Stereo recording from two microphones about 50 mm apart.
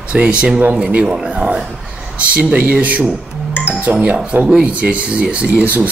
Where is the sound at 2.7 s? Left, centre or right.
Right.